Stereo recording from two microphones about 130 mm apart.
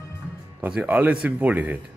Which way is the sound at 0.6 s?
15° right (ahead or behind).